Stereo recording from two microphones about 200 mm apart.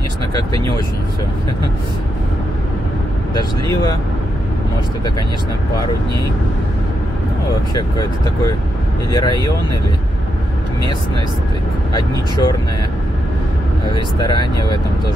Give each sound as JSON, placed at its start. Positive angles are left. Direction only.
{"t": 7.7, "sound": "speech", "side_deg": 20}
{"t": 11.9, "sound": "speech", "side_deg": 20}
{"t": 13.9, "sound": "speech", "side_deg": 20}